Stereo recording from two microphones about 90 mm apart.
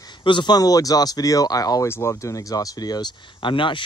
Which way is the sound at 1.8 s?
30° left (ahead or behind).